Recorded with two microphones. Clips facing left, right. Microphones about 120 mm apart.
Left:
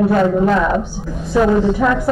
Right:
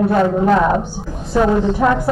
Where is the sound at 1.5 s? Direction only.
5° left (ahead or behind).